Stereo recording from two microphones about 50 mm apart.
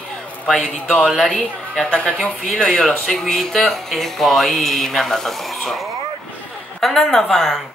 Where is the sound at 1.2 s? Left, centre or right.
Centre.